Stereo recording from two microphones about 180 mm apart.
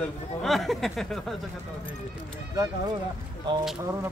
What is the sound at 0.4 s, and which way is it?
Speech, centre (ahead or behind).